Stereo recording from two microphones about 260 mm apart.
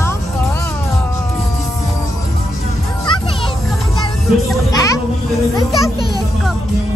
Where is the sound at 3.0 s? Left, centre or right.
Centre.